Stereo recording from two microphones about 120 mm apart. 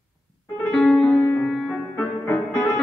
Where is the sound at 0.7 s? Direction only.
5° left (ahead or behind).